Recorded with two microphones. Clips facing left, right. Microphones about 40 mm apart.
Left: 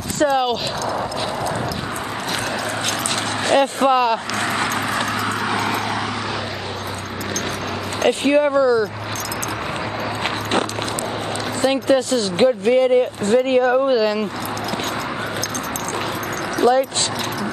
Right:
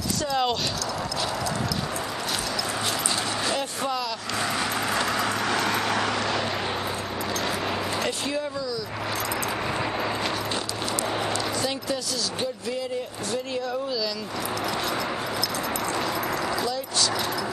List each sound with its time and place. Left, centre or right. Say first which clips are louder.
3.4 s speech: left 11 dB; left
4.9 s vehicle: left 3 dB; centre
8.0 s speech: left 12 dB; left
11.6 s speech: left 11 dB; left
16.5 s a sound: left 12 dB; left